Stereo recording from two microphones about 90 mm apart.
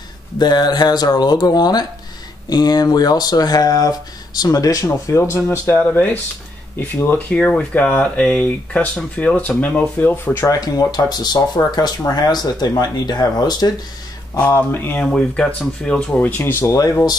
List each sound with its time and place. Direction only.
0.4 s speech: 50° left (ahead or behind); by 10.4 s 20° left (ahead or behind)
10.4 s speech: 40° left (ahead or behind)
14.6 s speech: 20° left (ahead or behind)
15.0 s speech: 10° left (ahead or behind); by 16.9 s 40° left (ahead or behind)